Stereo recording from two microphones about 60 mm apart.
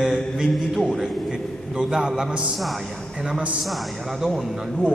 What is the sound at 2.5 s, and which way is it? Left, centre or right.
Speech, centre.